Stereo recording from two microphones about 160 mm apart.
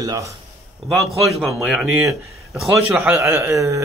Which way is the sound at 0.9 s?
Centre (ahead or behind).